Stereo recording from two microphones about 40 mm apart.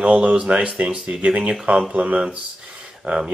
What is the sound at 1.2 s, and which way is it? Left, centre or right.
Speech, right.